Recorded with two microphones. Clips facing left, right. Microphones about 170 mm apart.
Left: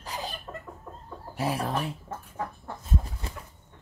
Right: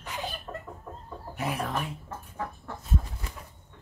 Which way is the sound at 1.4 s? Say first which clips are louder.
Left 2 dB; 30° left (ahead or behind).